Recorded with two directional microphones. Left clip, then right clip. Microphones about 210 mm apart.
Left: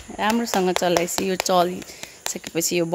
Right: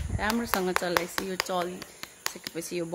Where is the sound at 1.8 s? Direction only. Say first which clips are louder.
Left 6 dB; centre (ahead or behind).